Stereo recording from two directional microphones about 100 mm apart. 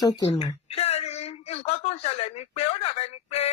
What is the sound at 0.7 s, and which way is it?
A woman's voice, 90° left.